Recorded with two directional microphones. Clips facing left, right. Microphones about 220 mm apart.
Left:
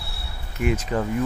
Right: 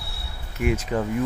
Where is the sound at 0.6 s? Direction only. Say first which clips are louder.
Even; 10° right (ahead or behind).